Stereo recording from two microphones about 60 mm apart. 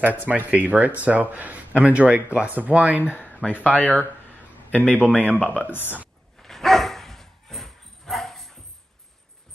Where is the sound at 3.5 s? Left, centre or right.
Left.